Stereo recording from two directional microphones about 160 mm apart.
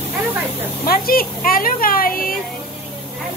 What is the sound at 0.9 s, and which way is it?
A woman's voice, 70° left (ahead or behind).